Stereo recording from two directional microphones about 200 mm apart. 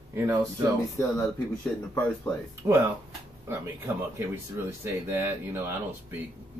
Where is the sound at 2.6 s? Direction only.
15° right (ahead or behind).